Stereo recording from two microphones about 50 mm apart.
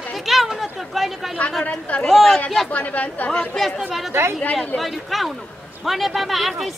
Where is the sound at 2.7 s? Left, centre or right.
Left.